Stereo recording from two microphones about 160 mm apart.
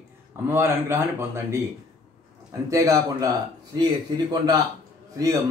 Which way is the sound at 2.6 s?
20° right (ahead or behind).